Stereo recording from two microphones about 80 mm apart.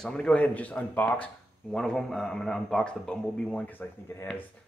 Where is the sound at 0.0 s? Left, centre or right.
Centre.